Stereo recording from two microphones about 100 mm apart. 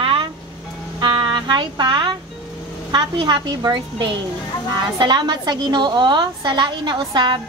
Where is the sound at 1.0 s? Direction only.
50° right (ahead or behind).